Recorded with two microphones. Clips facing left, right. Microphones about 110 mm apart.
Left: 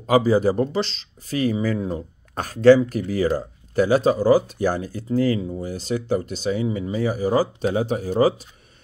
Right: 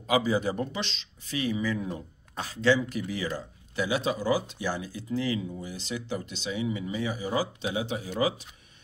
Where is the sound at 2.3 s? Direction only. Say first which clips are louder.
Left 11 dB; 50° left (ahead or behind).